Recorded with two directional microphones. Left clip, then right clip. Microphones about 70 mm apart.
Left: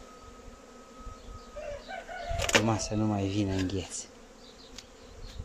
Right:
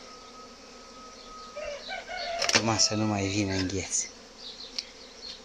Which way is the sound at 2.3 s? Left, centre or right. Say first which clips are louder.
Even; left.